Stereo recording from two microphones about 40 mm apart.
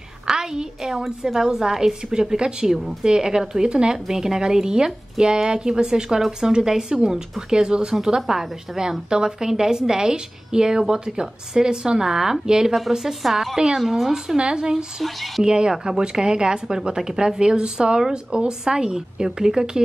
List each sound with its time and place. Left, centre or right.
0.3 s a woman's voice: centre
14.3 s speech: right
15.0 s speech: centre
15.4 s a woman's voice: right